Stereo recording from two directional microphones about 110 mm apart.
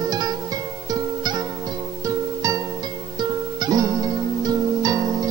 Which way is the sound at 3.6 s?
35° right (ahead or behind).